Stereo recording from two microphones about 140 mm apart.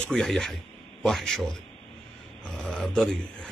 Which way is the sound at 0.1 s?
5° left (ahead or behind).